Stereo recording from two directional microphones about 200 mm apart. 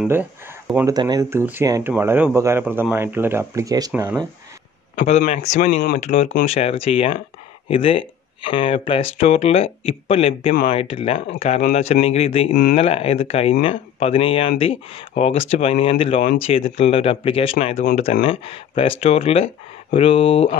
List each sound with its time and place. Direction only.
0.0 s a sound: 5° right (ahead or behind)
0.9 s speech: 20° right (ahead or behind)
4.9 s speech: 40° left (ahead or behind)